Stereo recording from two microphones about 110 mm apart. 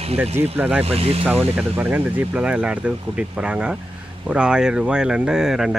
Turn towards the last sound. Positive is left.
turn(degrees=-5)  # may be behind; listen again after turning